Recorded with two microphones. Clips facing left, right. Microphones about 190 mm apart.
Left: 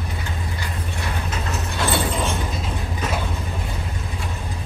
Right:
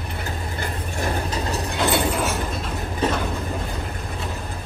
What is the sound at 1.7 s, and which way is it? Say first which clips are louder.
Mechanisms: right 2 dB; 20° right (ahead or behind).